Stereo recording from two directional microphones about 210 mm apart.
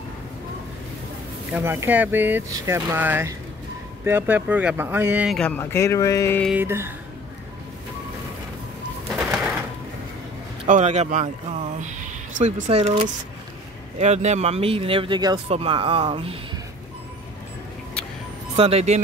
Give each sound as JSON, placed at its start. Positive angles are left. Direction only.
{"t": 1.5, "sound": "speech", "side_deg": -10}
{"t": 5.6, "sound": "speech", "side_deg": 10}
{"t": 6.5, "sound": "speech", "side_deg": -10}
{"t": 9.1, "sound": "bird", "side_deg": 0}
{"t": 10.7, "sound": "speech", "side_deg": -35}
{"t": 18.6, "sound": "speech", "side_deg": -30}